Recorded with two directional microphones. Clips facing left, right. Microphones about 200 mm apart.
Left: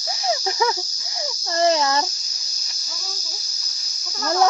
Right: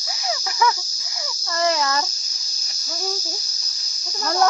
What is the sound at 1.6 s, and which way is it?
Cricket, 25° left (ahead or behind).